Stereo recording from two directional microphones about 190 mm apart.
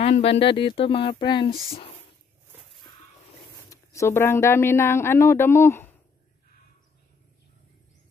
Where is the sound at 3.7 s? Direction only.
15° left (ahead or behind).